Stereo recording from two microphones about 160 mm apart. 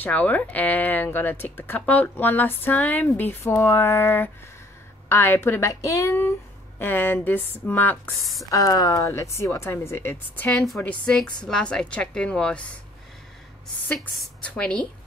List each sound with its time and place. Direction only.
0.0 s speech: 10° left (ahead or behind)
8.2 s speech: centre (ahead or behind)
8.5 s speech: 20° left (ahead or behind); by 12.7 s 5° left (ahead or behind)
13.8 s speech: centre (ahead or behind)